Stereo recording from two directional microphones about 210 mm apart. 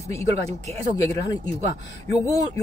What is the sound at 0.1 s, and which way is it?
Speech, 30° right (ahead or behind).